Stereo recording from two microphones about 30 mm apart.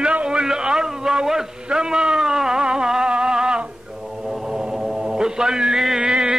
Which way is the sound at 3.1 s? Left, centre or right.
Right.